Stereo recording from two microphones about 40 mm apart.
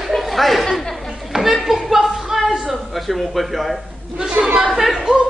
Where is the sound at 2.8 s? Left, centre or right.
Centre.